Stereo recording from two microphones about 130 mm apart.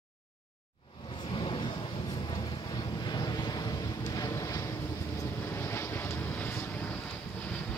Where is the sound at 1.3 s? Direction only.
40° left (ahead or behind).